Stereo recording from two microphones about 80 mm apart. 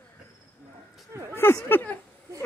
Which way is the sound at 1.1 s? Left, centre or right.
Right.